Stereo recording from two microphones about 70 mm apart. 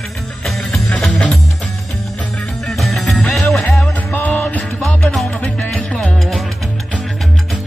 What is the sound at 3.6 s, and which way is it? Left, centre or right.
Music, centre.